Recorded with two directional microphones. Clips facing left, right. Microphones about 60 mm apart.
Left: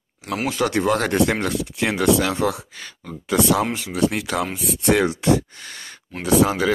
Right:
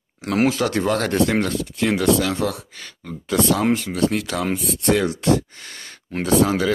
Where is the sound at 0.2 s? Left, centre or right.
Right.